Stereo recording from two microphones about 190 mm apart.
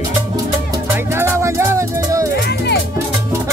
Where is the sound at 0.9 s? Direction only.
15° right (ahead or behind).